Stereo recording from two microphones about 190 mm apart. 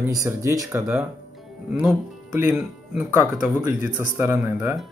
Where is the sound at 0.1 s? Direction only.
15° right (ahead or behind).